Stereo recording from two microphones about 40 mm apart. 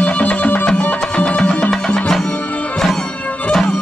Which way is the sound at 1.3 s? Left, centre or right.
Left.